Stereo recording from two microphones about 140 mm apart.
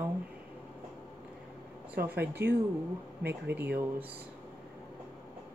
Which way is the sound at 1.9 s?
15° right (ahead or behind).